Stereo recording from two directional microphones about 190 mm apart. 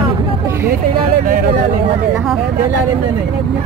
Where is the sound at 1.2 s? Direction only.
50° right (ahead or behind).